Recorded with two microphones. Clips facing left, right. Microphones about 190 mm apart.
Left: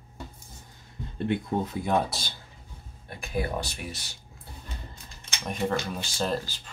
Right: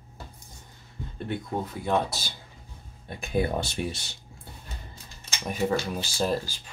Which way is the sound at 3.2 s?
25° right (ahead or behind).